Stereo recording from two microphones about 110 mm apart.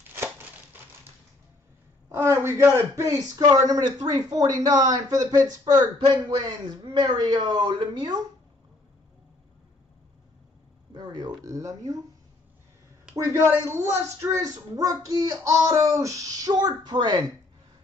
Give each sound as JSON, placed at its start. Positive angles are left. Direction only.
{"t": 2.0, "sound": "a man's voice", "side_deg": -25}
{"t": 10.9, "sound": "a sound", "side_deg": -45}
{"t": 11.4, "sound": "a man's voice", "side_deg": -30}
{"t": 13.1, "sound": "a man's voice", "side_deg": -25}